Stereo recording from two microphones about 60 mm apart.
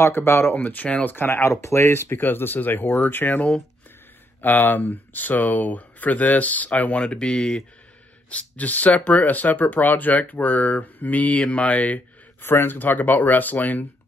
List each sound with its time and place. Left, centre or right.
0.0 s speech: left
1.1 s speech: left; by 7.6 s centre
8.3 s speech: left
12.4 s speech: left